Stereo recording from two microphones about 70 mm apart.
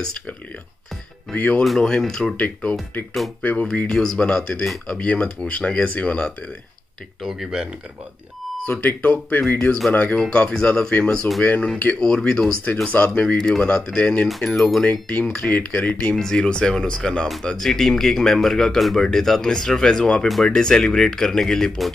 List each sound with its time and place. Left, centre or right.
1.3 s speech: left
1.6 s speech: centre
2.3 s speech: left
7.2 s speech: centre
8.6 s speech: left
9.4 s speech: left
10.1 s speech: centre
14.4 s speech: centre
14.8 s speech: centre
16.2 s speech: centre